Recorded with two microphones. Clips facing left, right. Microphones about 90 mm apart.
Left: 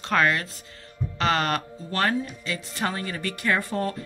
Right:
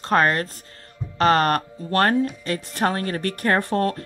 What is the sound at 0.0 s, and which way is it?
Speech, 45° right (ahead or behind).